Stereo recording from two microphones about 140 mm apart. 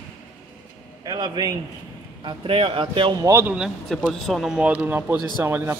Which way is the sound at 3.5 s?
Centre (ahead or behind).